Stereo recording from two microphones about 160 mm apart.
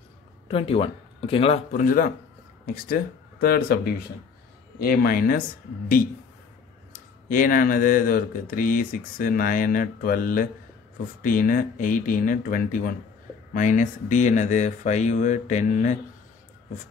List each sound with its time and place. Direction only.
0.5 s speech: 35° left (ahead or behind); by 5.4 s 65° left (ahead or behind)
6.9 s speech: 60° left (ahead or behind)